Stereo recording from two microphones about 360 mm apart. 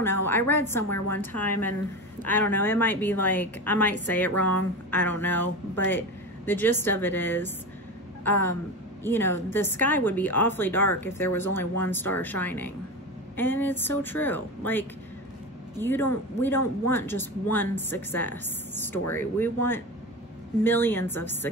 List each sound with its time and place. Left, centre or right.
0.0 s a woman's voice: centre